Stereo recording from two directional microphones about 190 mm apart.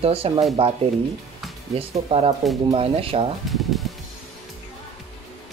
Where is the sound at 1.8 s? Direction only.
30° right (ahead or behind).